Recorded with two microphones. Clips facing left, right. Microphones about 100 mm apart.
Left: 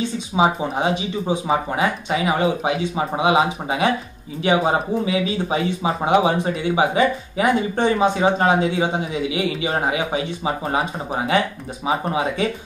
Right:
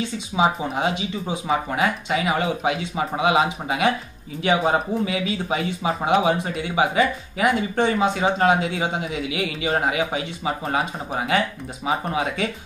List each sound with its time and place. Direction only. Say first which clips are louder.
0.4 s speech: left 2 dB; 30° left (ahead or behind)